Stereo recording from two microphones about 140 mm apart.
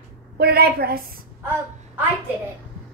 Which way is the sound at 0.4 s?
90° right.